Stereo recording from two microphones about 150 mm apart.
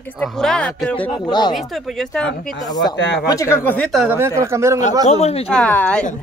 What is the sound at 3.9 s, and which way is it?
Speech, 10° right (ahead or behind).